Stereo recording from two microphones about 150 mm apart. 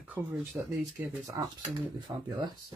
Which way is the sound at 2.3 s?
30° right (ahead or behind).